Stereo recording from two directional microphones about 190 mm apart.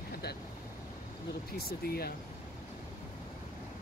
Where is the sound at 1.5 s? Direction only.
55° left (ahead or behind).